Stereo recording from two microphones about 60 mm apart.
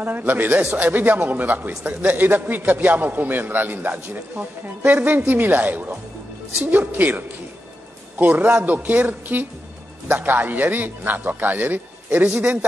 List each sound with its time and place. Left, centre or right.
0.0 s a man's voice: right